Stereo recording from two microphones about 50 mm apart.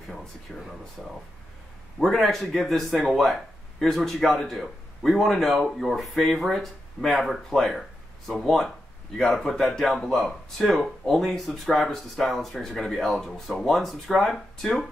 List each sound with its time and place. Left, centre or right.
0.6 s speech: centre